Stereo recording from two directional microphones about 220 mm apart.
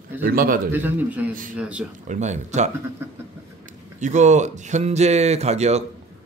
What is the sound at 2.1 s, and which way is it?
Speech, 30° right (ahead or behind).